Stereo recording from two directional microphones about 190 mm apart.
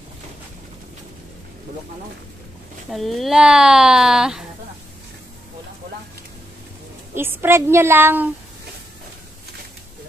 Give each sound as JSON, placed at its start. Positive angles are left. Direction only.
{"t": 2.9, "sound": "speech", "side_deg": 0}
{"t": 7.2, "sound": "a woman's voice", "side_deg": -10}